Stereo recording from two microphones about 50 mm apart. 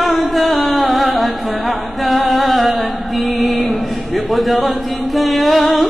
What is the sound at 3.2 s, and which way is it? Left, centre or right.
Speech, centre.